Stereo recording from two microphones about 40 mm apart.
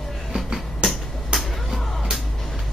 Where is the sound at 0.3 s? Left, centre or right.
Right.